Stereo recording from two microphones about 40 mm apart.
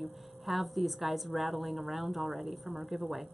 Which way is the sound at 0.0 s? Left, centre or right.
Centre.